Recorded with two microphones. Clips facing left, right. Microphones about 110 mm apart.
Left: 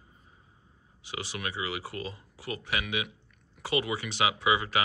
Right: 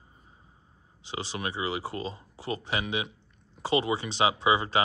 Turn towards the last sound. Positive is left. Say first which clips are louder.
# right 2 dB
turn(degrees=-30)  # may be behind; listen again after turning